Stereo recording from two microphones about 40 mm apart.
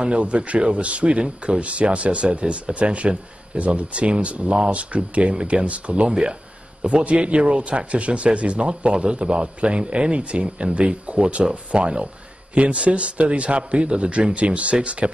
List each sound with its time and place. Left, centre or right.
0.0 s a man's voice: right